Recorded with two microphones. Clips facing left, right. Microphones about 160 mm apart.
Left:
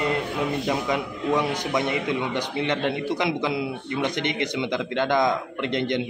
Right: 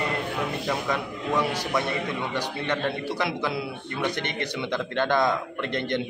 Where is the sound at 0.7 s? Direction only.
15° left (ahead or behind).